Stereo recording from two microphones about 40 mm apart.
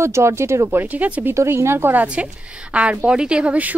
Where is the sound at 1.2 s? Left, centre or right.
Right.